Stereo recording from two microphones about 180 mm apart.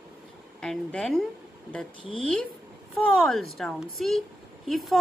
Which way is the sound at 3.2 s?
Centre (ahead or behind).